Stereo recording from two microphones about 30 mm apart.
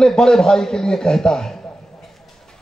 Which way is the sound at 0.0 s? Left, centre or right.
Left.